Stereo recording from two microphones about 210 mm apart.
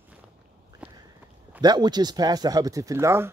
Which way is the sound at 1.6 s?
20° right (ahead or behind).